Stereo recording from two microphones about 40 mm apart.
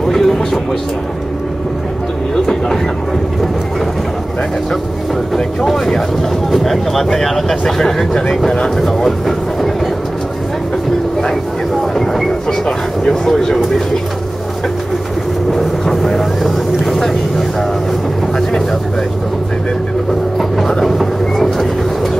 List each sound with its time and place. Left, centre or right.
0.1 s speech: centre
5.7 s speech: centre
11.9 s train: centre
12.6 s speech: centre
15.5 s vehicle: centre
18.3 s speech: centre
20.3 s train: centre